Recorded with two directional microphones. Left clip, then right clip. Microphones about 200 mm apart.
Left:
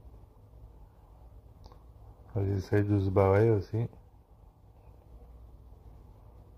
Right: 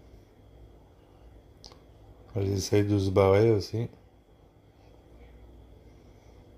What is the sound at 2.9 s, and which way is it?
Speech, 30° left (ahead or behind).